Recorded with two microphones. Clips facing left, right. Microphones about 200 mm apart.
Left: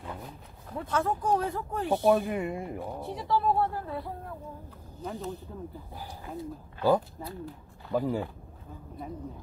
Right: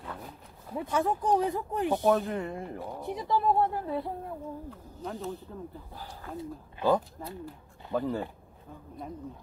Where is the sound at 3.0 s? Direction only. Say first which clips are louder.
Right 1 dB; 15° right (ahead or behind).